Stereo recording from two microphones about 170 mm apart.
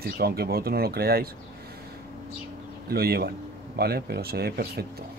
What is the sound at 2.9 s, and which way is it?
A man's voice, 65° right (ahead or behind).